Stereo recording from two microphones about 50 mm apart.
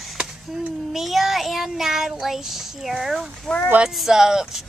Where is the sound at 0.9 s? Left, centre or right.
Centre.